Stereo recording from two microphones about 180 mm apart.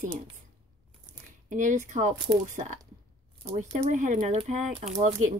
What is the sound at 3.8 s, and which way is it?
Speech, 45° right (ahead or behind).